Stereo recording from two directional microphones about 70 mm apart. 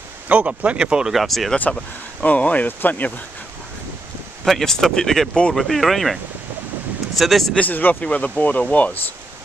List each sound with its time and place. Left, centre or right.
0.3 s speech: right
1.1 s speech: centre
2.2 s speech: left
4.5 s speech: centre
7.2 s speech: centre
7.5 s speech: left